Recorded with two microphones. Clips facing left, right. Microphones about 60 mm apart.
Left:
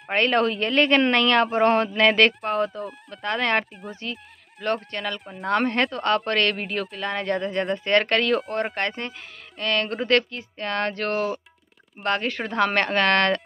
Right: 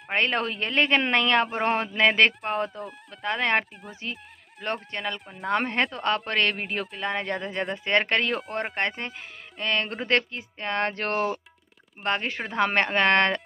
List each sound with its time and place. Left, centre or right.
0.1 s speech: centre
3.8 s speech: centre
4.6 s speech: centre
7.9 s speech: centre
8.4 s speech: centre
8.8 s speech: centre; by 11.4 s right
12.0 s speech: centre